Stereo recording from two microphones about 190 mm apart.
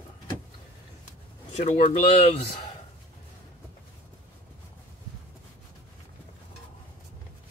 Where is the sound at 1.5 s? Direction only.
35° left (ahead or behind).